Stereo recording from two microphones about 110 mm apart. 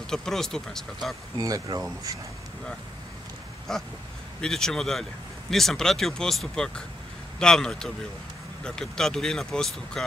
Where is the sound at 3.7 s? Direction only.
5° left (ahead or behind).